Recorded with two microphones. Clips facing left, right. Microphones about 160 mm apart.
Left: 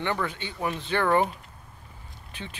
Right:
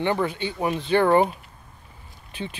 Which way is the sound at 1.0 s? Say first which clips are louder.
Right 4 dB; 25° right (ahead or behind).